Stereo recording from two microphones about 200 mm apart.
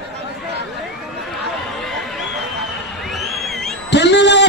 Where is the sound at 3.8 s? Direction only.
60° left (ahead or behind).